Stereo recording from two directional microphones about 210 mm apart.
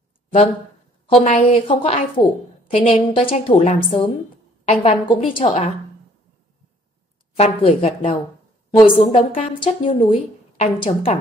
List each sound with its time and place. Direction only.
1.2 s a woman's voice: 30° left (ahead or behind)
7.3 s a woman's voice: 30° left (ahead or behind)